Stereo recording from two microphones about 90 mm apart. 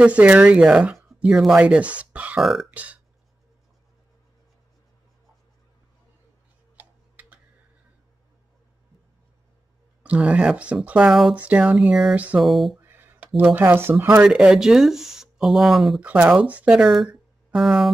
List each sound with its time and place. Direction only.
0.0 s speech: 15° right (ahead or behind)
2.4 s speech: centre (ahead or behind)
2.7 s speech: 15° right (ahead or behind)
6.8 s tick-tock: 20° right (ahead or behind)
10.0 s speech: 15° right (ahead or behind)
12.7 s a sound: 25° right (ahead or behind)
13.6 s speech: 25° right (ahead or behind)
14.2 s speech: 10° right (ahead or behind)
16.0 s speech: 15° right (ahead or behind)
17.1 s a sound: 5° right (ahead or behind)